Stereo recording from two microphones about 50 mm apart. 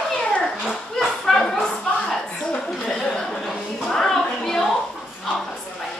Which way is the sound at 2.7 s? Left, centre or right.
Centre.